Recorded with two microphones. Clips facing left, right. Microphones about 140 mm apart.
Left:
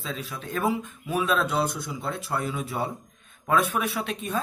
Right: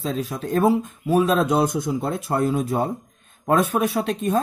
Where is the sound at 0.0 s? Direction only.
40° right (ahead or behind).